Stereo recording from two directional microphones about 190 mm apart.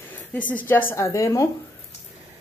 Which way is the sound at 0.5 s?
10° left (ahead or behind).